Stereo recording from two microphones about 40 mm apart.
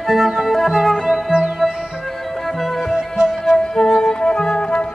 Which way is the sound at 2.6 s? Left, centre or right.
Centre.